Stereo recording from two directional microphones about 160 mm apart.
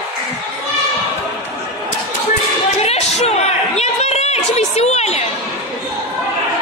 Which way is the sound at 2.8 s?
40° left (ahead or behind).